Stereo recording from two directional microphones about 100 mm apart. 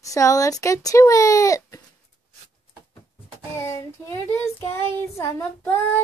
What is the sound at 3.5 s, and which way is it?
Speech, 30° left (ahead or behind).